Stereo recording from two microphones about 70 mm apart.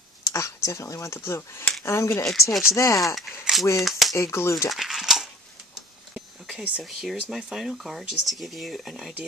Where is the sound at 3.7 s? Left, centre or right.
Centre.